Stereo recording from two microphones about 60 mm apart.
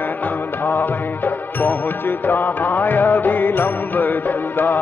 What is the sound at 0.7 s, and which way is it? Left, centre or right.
Music, left.